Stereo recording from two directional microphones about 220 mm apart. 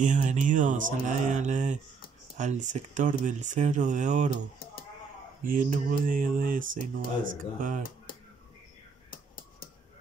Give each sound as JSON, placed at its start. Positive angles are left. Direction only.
{"t": 0.0, "sound": "speech", "side_deg": -35}
{"t": 5.4, "sound": "speech", "side_deg": -40}